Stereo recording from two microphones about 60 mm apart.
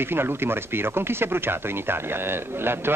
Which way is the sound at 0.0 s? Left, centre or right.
Right.